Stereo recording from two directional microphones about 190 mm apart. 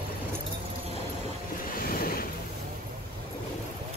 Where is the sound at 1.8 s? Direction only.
50° left (ahead or behind).